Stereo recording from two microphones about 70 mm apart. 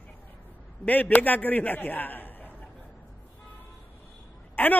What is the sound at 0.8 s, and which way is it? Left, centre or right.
A man's voice, left.